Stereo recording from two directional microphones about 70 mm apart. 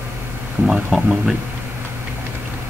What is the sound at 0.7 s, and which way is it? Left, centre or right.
Speech, centre.